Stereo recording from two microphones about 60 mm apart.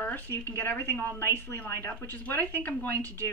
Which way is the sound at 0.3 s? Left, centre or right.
Left.